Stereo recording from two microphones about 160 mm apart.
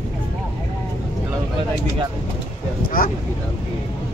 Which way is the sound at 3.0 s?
65° left (ahead or behind).